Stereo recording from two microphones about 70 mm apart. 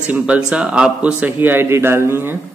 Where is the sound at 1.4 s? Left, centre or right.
Right.